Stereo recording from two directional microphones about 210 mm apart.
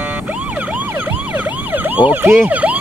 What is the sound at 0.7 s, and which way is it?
Emergency vehicle, 10° right (ahead or behind).